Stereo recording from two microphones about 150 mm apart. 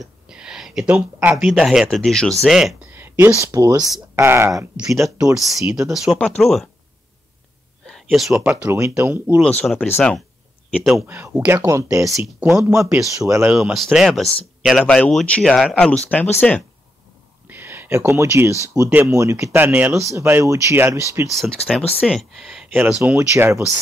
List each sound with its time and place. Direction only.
0.0 s a sound: 5° right (ahead or behind)
1.4 s speech: 5° right (ahead or behind)
2.9 s speech: 15° right (ahead or behind)
5.1 s speech: 5° right (ahead or behind)
7.8 s a sound: centre (ahead or behind)
8.5 s speech: 15° right (ahead or behind)
9.6 s speech: 5° left (ahead or behind)
10.7 s speech: centre (ahead or behind)
11.1 s speech: 15° right (ahead or behind)
13.6 s speech: centre (ahead or behind)
17.5 s speech: 15° right (ahead or behind)
21.3 s speech: centre (ahead or behind)
23.1 s speech: 20° right (ahead or behind)